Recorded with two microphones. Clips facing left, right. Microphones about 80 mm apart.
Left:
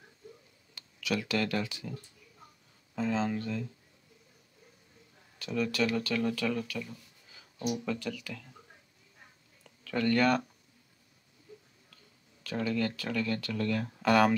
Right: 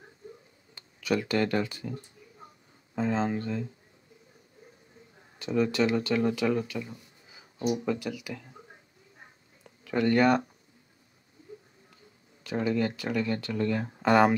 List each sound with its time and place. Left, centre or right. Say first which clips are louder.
0.7 s speech: right 5 dB; right
3.0 s speech: right 3 dB; right
5.4 s speech: right 5 dB; right
9.2 s a sound: right 4 dB; right
12.4 s speech: right 4 dB; right